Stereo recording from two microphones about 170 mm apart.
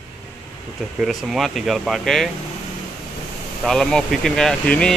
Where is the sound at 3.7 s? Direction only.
5° left (ahead or behind).